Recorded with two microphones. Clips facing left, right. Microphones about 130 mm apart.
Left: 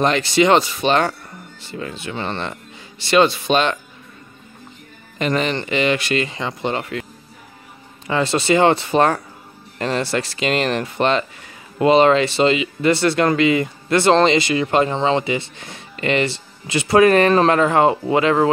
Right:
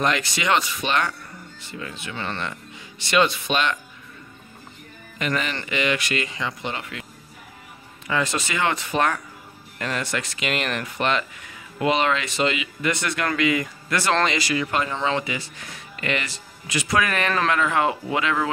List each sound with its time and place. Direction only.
0.0 s speech: 30° left (ahead or behind)
5.2 s speech: 30° left (ahead or behind)
8.1 s speech: 30° left (ahead or behind)